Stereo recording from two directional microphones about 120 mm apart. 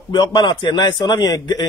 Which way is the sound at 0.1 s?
40° left (ahead or behind).